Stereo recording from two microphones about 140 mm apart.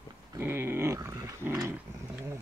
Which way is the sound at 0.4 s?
15° right (ahead or behind).